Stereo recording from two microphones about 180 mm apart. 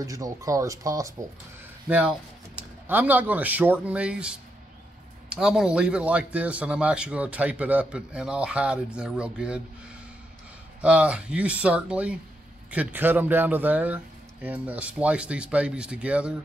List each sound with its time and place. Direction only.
0.0 s speech: 20° right (ahead or behind)
1.9 s speech: 5° right (ahead or behind)
10.8 s speech: 5° right (ahead or behind)